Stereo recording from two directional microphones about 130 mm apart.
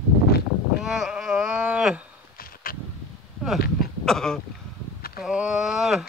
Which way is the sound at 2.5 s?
90° left.